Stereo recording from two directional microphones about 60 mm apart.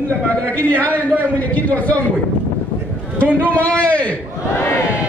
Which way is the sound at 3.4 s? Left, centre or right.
Left.